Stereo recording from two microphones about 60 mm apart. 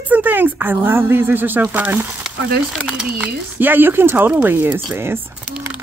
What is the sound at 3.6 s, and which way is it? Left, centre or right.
A woman's voice, right.